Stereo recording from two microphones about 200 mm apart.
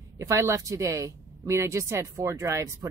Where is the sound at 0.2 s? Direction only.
15° right (ahead or behind).